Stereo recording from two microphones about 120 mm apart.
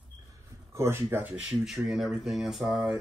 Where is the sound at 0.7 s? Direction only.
20° right (ahead or behind); by 2.8 s 5° right (ahead or behind).